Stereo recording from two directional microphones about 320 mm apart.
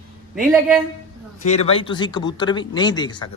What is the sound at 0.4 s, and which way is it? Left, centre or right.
Speech, centre.